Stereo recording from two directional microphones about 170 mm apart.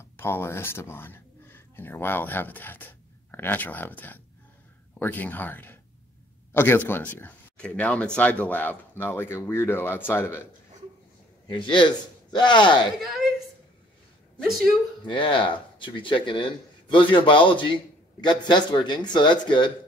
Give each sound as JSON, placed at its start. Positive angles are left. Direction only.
{"t": 0.0, "sound": "speech", "side_deg": 15}
{"t": 11.4, "sound": "speech", "side_deg": 30}
{"t": 13.0, "sound": "a sound", "side_deg": 0}
{"t": 14.5, "sound": "speech", "side_deg": 0}
{"t": 15.0, "sound": "speech", "side_deg": 30}